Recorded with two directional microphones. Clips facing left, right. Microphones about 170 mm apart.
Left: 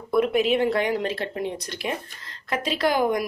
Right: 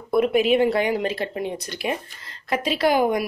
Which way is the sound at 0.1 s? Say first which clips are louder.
Right 2 dB; 10° right (ahead or behind).